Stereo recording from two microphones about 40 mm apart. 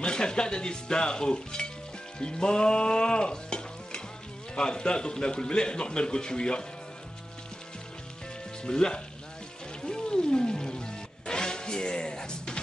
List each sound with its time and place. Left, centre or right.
0.0 s speech: left
2.1 s frying: left
4.6 s speech: left
8.6 s speech: centre
9.8 s music: left